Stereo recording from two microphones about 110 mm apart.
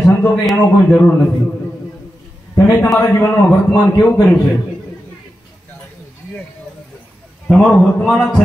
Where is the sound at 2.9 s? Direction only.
25° left (ahead or behind).